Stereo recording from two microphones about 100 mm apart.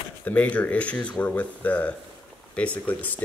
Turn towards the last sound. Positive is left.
turn(degrees=15)  # may be behind; listen again after turning